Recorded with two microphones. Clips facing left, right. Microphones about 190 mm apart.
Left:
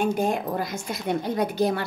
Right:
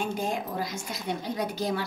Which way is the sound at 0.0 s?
60° left (ahead or behind).